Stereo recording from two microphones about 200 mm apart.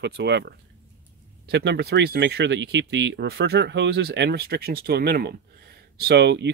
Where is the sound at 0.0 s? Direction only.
60° right (ahead or behind).